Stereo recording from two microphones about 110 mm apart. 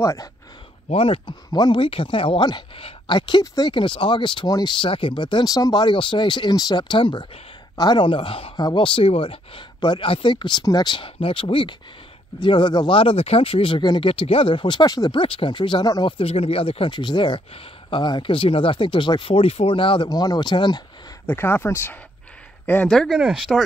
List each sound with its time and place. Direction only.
0.0 s speech: 30° left (ahead or behind)
0.8 s speech: 55° left (ahead or behind); by 4.7 s 40° left (ahead or behind)
4.8 s speech: 50° left (ahead or behind)
8.5 s speech: 40° left (ahead or behind)
16.2 s speech: 60° left (ahead or behind)
20.1 s speech: 35° left (ahead or behind)
21.3 s speech: 20° left (ahead or behind)
22.8 s speech: centre (ahead or behind)